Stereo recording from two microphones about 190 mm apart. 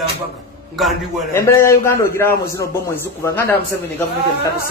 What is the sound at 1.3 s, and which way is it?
A man's voice, 15° left (ahead or behind).